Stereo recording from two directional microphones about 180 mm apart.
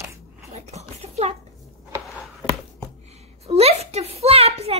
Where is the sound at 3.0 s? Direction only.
35° right (ahead or behind).